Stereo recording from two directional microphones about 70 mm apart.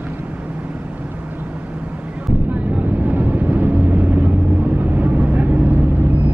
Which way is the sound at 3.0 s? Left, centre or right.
Right.